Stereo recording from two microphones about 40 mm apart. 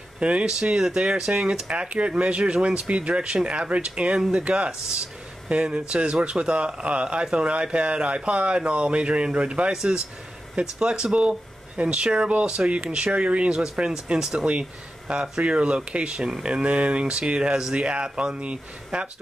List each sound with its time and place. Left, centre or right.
0.2 s speech: right
0.5 s speech: centre
9.7 s speech: centre
16.4 s speech: right